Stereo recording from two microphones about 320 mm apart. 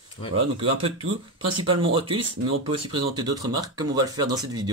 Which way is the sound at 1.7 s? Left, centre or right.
Centre.